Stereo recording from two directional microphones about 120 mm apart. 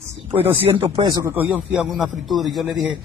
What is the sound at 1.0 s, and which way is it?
Speech, 30° right (ahead or behind).